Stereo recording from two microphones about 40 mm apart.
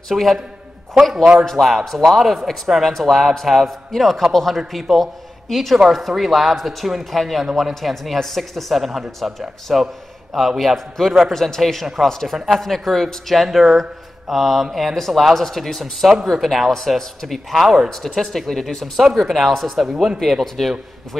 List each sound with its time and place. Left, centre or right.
0.1 s speech: centre
1.1 s a man's voice: right
1.6 s a woman's voice: centre
11.0 s a man's voice: centre
12.4 s speech: centre
12.6 s speech: centre
19.8 s speech: centre
20.2 s speech: centre